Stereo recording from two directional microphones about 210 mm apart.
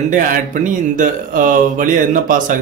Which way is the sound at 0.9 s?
40° right (ahead or behind).